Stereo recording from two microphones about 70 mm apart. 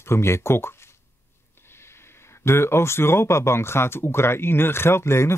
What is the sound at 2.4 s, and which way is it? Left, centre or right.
Speech, left.